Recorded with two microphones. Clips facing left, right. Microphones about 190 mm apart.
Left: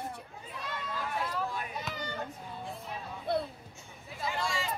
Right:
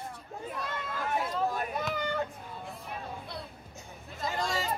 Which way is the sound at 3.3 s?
55° left (ahead or behind).